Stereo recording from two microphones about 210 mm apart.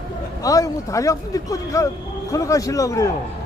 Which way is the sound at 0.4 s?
15° left (ahead or behind).